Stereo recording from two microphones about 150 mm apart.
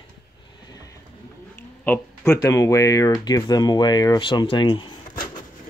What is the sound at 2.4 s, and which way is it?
Speech, 20° left (ahead or behind).